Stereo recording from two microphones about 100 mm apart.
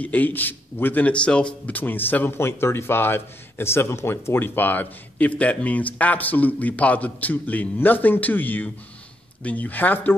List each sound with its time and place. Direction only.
0.0 s a man's voice: 15° left (ahead or behind)